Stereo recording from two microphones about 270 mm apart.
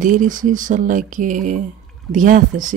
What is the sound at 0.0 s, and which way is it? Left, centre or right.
Speech, right.